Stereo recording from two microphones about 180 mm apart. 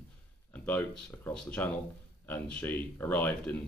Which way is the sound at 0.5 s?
10° left (ahead or behind).